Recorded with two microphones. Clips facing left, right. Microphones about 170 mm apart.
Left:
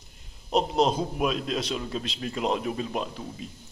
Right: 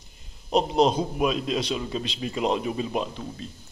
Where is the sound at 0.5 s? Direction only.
Centre (ahead or behind).